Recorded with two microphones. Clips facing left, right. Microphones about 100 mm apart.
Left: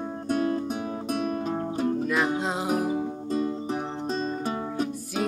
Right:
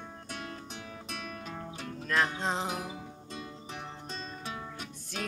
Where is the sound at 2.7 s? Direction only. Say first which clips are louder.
Left 13 dB; 50° left (ahead or behind).